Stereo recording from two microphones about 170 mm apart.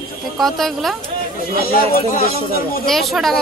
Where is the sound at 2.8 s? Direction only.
Centre (ahead or behind).